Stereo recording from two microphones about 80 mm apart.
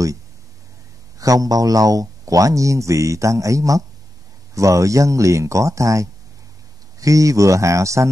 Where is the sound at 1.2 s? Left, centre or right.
Right.